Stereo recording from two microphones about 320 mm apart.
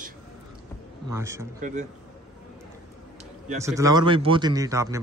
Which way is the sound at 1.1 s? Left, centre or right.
Centre.